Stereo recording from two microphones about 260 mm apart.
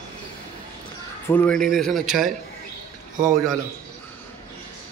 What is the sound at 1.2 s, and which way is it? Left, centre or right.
A man's voice, centre.